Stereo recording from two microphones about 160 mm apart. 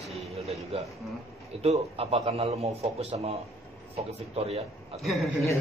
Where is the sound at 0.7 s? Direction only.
40° right (ahead or behind).